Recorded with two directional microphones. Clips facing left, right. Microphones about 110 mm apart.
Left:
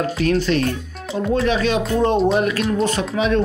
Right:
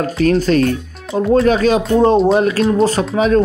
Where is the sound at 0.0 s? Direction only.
40° right (ahead or behind).